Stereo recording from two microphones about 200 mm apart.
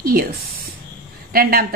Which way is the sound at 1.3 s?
50° right (ahead or behind).